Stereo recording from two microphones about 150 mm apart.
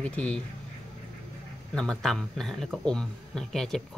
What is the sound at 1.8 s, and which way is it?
Speech, 5° left (ahead or behind).